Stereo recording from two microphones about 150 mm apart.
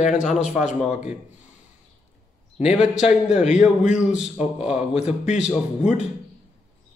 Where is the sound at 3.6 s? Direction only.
50° left (ahead or behind).